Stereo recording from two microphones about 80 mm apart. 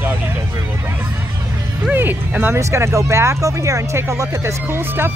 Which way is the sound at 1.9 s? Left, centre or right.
Right.